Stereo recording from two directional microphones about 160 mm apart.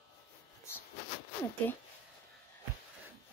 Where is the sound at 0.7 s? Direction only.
15° left (ahead or behind).